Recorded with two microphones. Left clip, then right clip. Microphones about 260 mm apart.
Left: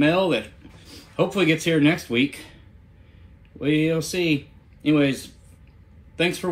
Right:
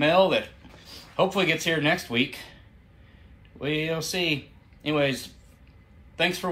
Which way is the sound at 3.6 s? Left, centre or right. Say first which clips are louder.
Left 5 dB; centre.